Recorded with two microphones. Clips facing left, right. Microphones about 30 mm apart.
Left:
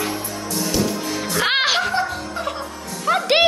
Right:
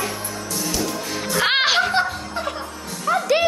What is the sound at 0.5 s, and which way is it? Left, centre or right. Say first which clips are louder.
Music: left 3 dB; centre.